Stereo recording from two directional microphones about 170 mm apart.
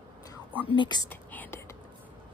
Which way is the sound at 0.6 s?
30° left (ahead or behind).